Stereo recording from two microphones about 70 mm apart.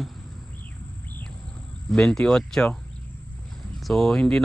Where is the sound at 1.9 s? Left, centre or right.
Centre.